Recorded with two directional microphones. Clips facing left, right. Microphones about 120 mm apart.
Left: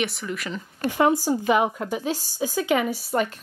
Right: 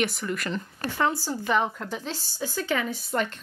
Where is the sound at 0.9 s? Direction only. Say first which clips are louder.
Left 6 dB; 15° left (ahead or behind).